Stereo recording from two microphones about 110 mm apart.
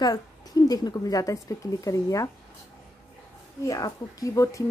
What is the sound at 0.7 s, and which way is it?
Speech, 35° left (ahead or behind).